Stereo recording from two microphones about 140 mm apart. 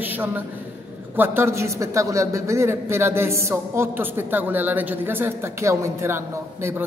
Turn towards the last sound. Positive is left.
turn(degrees=-15)  # may be behind; listen again after turning